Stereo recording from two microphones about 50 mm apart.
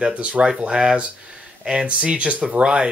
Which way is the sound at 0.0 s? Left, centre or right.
Right.